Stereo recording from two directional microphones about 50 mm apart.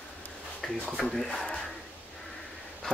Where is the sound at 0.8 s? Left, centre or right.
Centre.